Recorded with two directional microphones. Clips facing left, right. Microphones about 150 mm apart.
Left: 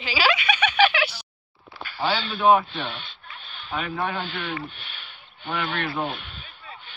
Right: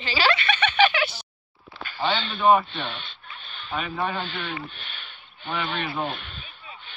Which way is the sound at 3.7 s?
Centre (ahead or behind).